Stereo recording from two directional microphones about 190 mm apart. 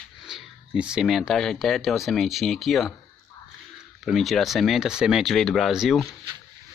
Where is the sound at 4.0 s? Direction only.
Centre (ahead or behind).